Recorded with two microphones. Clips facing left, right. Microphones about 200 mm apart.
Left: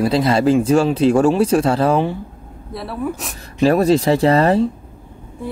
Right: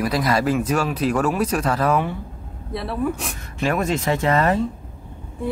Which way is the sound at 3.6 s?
35° left (ahead or behind).